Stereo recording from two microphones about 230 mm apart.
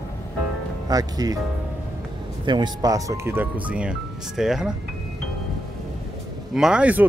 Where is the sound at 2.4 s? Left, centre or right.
Centre.